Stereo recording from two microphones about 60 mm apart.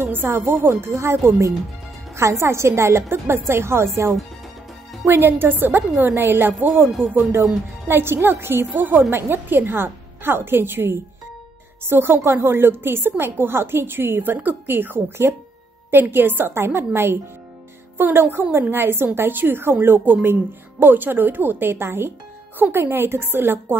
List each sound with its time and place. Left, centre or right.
0.0 s a woman's voice: right